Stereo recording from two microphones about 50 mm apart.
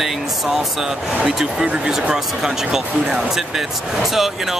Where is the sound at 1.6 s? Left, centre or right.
Right.